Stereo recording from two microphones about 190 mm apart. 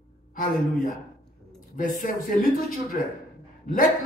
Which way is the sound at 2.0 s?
45° left (ahead or behind).